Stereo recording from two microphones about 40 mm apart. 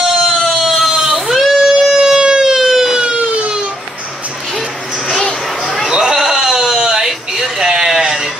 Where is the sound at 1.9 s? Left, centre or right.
Centre.